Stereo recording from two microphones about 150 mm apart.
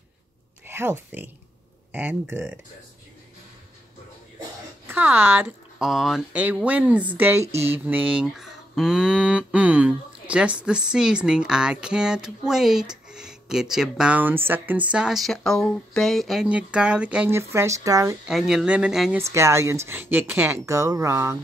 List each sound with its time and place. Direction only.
0.7 s speech: 15° right (ahead or behind)
4.8 s speech: 10° right (ahead or behind)
5.8 s speech: centre (ahead or behind); by 18.1 s 20° right (ahead or behind)
18.2 s speech: centre (ahead or behind)
19.1 s speech: 20° right (ahead or behind)